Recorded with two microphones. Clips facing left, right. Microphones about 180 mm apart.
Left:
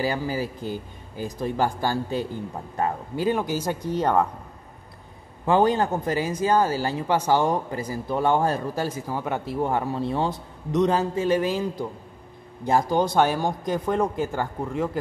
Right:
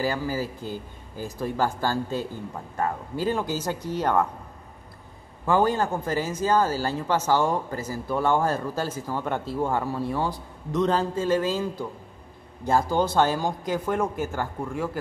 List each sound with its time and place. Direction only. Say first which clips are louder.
0.0 s speech: left 1 dB; 20° left (ahead or behind)
5.4 s speech: left 2 dB; 20° left (ahead or behind)